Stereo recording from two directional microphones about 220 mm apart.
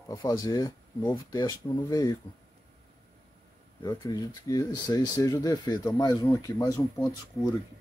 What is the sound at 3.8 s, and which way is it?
Speech, 20° left (ahead or behind).